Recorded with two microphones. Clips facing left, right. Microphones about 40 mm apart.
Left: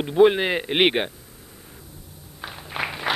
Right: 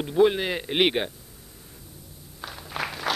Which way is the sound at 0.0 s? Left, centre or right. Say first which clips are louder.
Left 4 dB; left.